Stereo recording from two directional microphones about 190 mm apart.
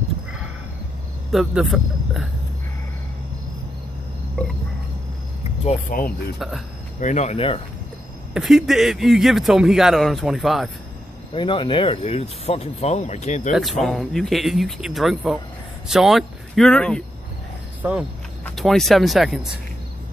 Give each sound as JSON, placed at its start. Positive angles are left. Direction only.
{"t": 1.3, "sound": "a man's voice", "side_deg": -5}
{"t": 5.7, "sound": "speech", "side_deg": 45}
{"t": 8.3, "sound": "speech", "side_deg": 0}
{"t": 11.3, "sound": "speech", "side_deg": 25}
{"t": 13.5, "sound": "speech", "side_deg": 0}
{"t": 17.8, "sound": "speech", "side_deg": -10}
{"t": 18.4, "sound": "speech", "side_deg": 0}